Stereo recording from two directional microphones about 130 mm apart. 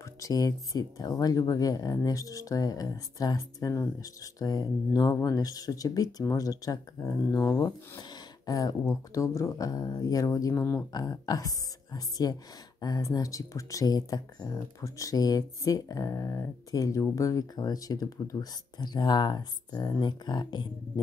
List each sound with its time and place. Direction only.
0.0 s speech: 25° left (ahead or behind)
10.9 s speech: 30° left (ahead or behind)